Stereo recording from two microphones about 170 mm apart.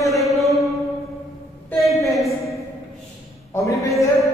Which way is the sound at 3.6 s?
20° left (ahead or behind).